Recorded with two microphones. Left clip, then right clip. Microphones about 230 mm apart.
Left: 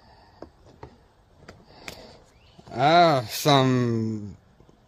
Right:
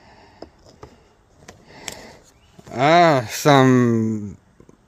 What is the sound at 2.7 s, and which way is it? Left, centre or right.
Speech, right.